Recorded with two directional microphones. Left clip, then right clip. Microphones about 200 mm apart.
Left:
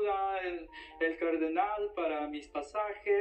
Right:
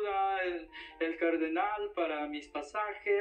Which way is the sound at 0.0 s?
25° right (ahead or behind).